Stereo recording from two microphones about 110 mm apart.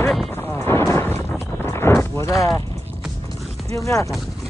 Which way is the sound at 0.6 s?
25° left (ahead or behind).